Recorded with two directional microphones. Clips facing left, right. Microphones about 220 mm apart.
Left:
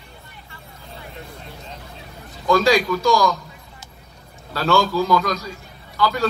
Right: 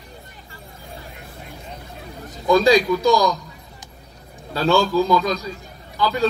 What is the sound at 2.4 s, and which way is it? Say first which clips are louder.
Speech: right 2 dB; 20° right (ahead or behind).